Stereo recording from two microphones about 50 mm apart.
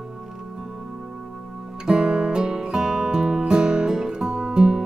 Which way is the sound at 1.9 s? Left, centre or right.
Centre.